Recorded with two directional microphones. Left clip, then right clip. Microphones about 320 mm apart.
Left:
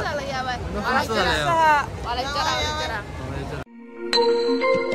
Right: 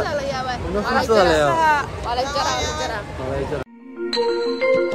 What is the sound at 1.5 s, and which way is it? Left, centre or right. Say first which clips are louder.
Speech: even; left.